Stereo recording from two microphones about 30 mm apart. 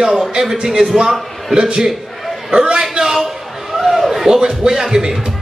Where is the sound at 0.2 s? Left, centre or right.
Centre.